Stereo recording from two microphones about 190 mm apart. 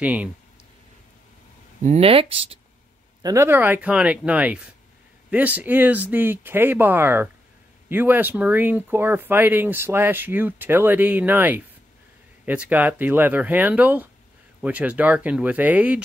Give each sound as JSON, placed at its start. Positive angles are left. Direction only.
{"t": 0.0, "sound": "speech", "side_deg": -5}
{"t": 1.8, "sound": "speech", "side_deg": -35}
{"t": 3.2, "sound": "speech", "side_deg": -15}